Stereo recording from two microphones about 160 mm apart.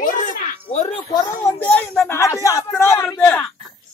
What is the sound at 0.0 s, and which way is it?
Music, 55° left (ahead or behind).